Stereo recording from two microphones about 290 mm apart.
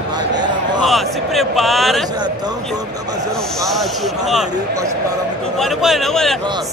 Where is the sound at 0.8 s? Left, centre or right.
Centre.